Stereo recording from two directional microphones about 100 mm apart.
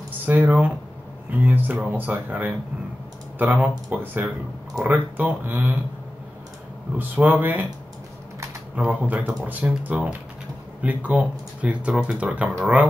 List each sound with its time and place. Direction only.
0.2 s speech: 15° right (ahead or behind)
7.0 s speech: 20° right (ahead or behind)
8.7 s speech: 15° right (ahead or behind)